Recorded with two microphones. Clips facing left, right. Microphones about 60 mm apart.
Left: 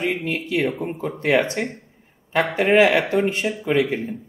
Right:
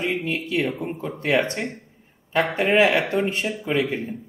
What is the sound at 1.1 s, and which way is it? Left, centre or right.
Speech, centre.